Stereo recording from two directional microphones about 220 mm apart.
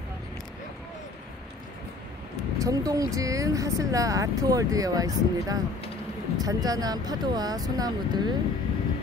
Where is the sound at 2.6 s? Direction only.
15° right (ahead or behind).